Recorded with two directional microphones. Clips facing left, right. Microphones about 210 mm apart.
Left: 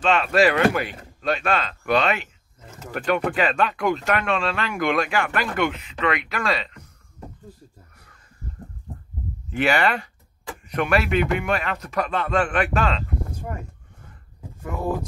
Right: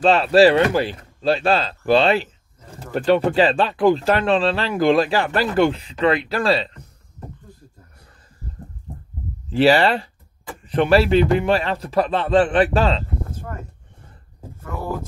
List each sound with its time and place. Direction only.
0.0 s speech: 35° right (ahead or behind)
9.5 s speech: 30° right (ahead or behind)
13.3 s a sound: 15° left (ahead or behind)